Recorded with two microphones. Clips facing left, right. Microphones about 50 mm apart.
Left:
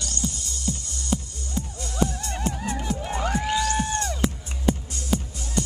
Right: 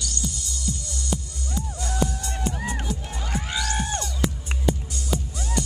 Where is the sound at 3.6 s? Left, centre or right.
Right.